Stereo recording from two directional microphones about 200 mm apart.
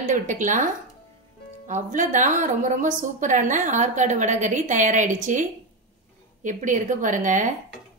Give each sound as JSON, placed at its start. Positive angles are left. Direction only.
{"t": 0.1, "sound": "a woman's voice", "side_deg": -40}
{"t": 1.7, "sound": "a woman's voice", "side_deg": -40}